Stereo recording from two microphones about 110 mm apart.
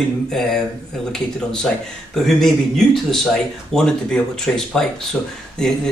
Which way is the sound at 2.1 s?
5° left (ahead or behind).